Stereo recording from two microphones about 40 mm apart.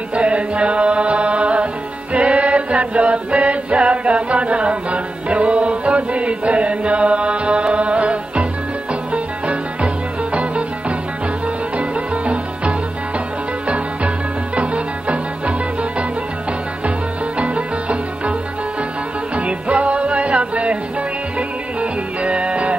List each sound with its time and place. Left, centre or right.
0.1 s music: right
2.1 s chant: right
9.1 s music: right
17.4 s music: right
19.3 s music: right
22.2 s music: right